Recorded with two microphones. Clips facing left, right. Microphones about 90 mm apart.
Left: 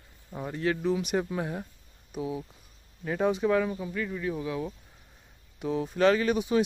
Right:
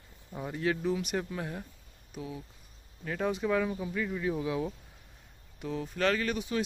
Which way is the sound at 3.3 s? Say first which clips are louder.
Left 3 dB; centre (ahead or behind).